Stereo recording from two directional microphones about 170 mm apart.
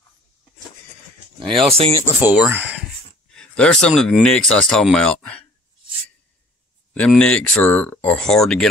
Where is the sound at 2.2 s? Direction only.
10° right (ahead or behind).